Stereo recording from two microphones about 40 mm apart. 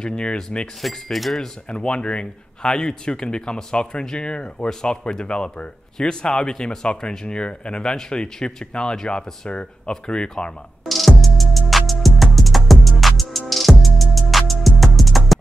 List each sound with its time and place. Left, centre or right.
0.0 s speech: left
1.1 s speech: centre
1.7 s speech: left
9.5 s speech: left
10.9 s music: centre